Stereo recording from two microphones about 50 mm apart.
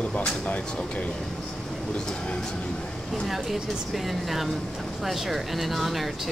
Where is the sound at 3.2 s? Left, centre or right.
Centre.